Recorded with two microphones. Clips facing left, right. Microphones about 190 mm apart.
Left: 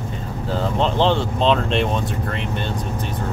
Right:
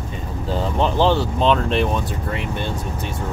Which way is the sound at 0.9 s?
5° right (ahead or behind).